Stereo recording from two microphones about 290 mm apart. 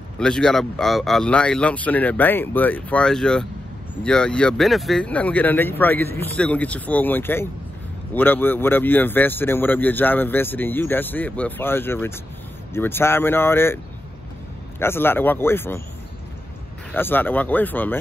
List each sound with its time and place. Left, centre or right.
0.2 s speech: centre
14.8 s speech: centre
16.9 s speech: centre